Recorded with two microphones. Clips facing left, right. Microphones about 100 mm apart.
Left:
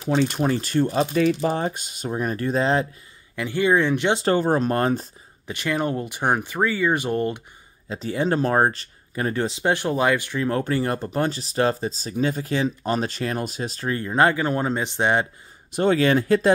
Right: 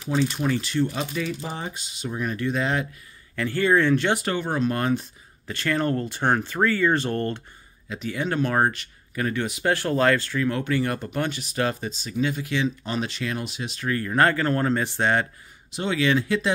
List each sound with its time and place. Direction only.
0.1 s speech: 55° left (ahead or behind)
0.4 s speech: 40° left (ahead or behind)
1.2 s speech: 55° left (ahead or behind); by 2.9 s 30° left (ahead or behind)
3.3 s speech: 15° left (ahead or behind)
4.2 s speech: 35° left (ahead or behind)
5.5 s speech: 15° left (ahead or behind)
7.9 s speech: 30° left (ahead or behind); by 10.4 s 15° left (ahead or behind)
10.4 s speech: 35° left (ahead or behind)
13.8 s speech: 20° left (ahead or behind)
15.7 s speech: 45° left (ahead or behind)